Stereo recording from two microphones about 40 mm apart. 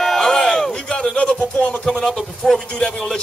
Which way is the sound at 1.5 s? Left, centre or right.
Left.